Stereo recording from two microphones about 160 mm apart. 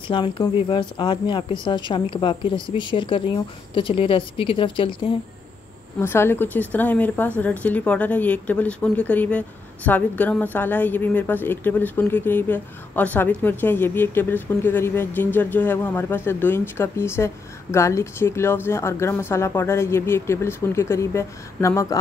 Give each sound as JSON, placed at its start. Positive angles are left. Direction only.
{"t": 0.1, "sound": "speech", "side_deg": 30}
{"t": 5.9, "sound": "speech", "side_deg": 15}